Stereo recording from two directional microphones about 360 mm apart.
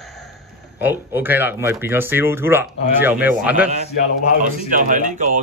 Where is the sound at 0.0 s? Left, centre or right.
Centre.